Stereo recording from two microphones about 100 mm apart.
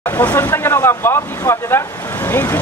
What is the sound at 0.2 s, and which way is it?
Speech, 20° left (ahead or behind).